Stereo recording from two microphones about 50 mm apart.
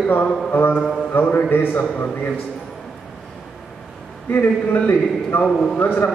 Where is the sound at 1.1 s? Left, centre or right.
Left.